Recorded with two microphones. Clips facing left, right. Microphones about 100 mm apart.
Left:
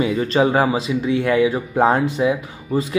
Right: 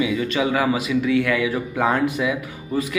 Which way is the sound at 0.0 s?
40° left (ahead or behind).